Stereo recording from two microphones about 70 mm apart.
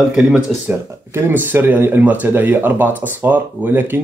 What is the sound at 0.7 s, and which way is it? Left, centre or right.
Speech, right.